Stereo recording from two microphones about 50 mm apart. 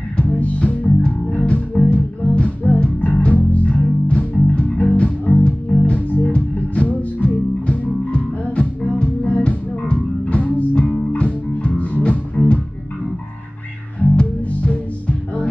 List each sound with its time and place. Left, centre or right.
0.2 s music: left
14.1 s music: left